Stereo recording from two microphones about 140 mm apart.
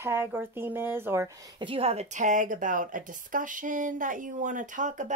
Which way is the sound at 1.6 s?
40° right (ahead or behind).